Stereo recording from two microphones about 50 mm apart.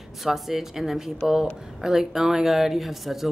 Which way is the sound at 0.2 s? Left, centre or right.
Centre.